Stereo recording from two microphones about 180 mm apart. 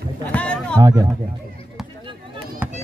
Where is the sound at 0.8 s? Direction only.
20° right (ahead or behind).